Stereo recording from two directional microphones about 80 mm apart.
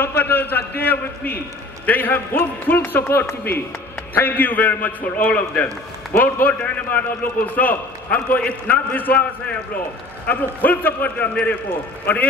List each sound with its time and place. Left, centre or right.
0.0 s a man's voice: left
10.2 s a man's voice: left